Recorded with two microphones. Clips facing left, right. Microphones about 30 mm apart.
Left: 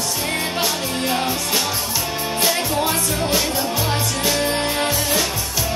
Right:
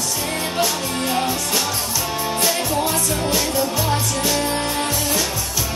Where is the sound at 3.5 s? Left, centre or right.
Centre.